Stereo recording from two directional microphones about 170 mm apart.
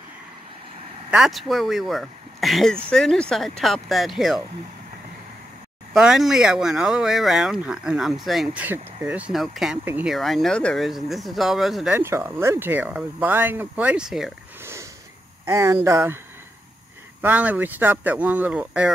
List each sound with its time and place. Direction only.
1.1 s speech: centre (ahead or behind)
5.9 s speech: 5° right (ahead or behind)
10.1 s speech: centre (ahead or behind)
11.9 s speech: 15° right (ahead or behind)
14.6 s sniff: 15° right (ahead or behind)
15.4 s speech: 15° right (ahead or behind)
17.2 s speech: 10° right (ahead or behind)